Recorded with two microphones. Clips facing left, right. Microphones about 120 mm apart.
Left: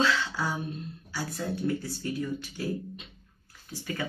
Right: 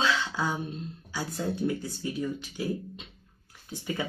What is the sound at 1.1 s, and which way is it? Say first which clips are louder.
Speech: right 1 dB; 20° right (ahead or behind).